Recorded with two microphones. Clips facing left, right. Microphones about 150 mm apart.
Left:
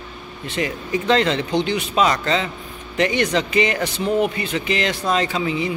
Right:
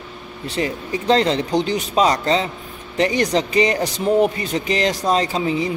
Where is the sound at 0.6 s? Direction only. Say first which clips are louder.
Even; 35° right (ahead or behind).